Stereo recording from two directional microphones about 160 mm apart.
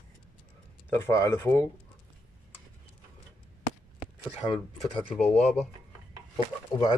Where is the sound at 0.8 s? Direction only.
15° left (ahead or behind).